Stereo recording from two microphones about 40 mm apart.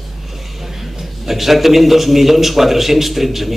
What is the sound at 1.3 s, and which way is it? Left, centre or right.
A man's voice, centre.